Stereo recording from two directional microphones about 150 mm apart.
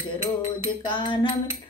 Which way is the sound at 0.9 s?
30° left (ahead or behind).